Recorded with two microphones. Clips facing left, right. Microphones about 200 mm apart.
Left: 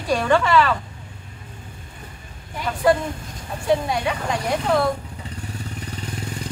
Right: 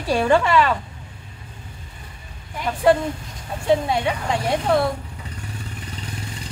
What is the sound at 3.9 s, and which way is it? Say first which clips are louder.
Speech: right 1 dB; 25° right (ahead or behind).